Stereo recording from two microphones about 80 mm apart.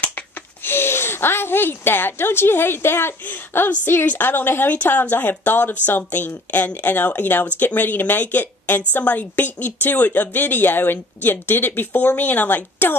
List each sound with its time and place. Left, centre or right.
0.7 s a woman's voice: left